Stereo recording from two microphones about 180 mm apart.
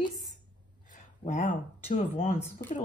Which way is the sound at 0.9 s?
40° left (ahead or behind).